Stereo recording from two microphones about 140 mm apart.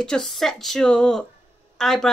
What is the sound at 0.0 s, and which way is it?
Speech, 5° left (ahead or behind).